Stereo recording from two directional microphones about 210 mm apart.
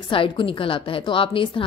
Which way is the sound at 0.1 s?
25° left (ahead or behind).